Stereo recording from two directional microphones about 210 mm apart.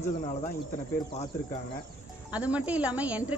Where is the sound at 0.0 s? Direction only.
30° left (ahead or behind).